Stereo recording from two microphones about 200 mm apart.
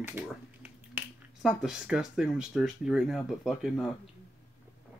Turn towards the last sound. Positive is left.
turn(degrees=0)  # may be behind; listen again after turning